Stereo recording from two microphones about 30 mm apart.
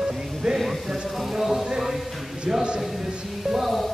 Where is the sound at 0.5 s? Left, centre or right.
Centre.